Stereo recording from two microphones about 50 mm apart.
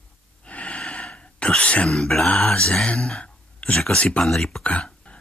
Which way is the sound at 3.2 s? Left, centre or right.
Left.